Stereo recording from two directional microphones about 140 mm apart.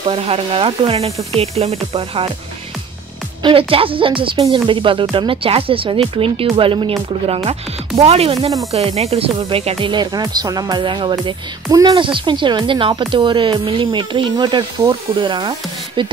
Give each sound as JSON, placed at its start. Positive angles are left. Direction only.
{"t": 0.1, "sound": "speech", "side_deg": -45}
{"t": 3.4, "sound": "speech", "side_deg": -40}